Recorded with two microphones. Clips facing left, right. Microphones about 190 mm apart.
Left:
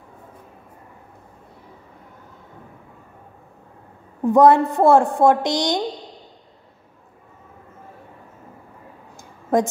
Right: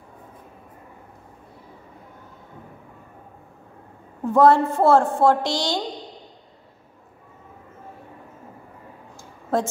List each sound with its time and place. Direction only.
4.2 s a woman's voice: 15° left (ahead or behind)
9.5 s a woman's voice: 15° left (ahead or behind)